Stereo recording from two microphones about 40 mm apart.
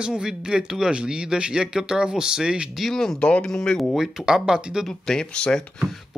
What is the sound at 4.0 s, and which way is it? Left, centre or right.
Speech, centre.